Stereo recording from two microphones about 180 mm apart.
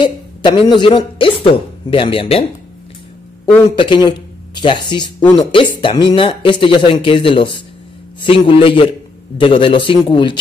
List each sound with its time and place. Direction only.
0.0 s speech: 25° left (ahead or behind)
3.7 s speech: 25° left (ahead or behind)